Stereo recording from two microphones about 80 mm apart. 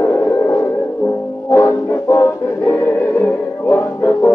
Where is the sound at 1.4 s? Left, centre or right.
Left.